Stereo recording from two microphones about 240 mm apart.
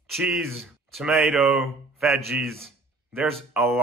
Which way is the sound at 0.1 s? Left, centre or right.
Centre.